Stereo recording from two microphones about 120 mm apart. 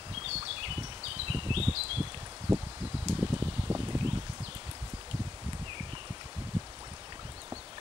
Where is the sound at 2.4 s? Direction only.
30° right (ahead or behind).